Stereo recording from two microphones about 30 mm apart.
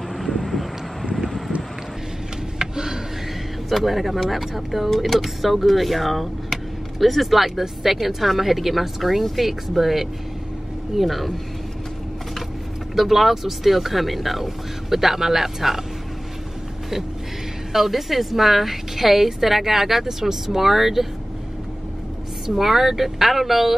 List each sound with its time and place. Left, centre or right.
0.2 s vehicle: centre
2.6 s a sound: right
3.6 s a woman's voice: centre
12.9 s a woman's voice: centre
17.7 s a woman's voice: centre
22.6 s speech: centre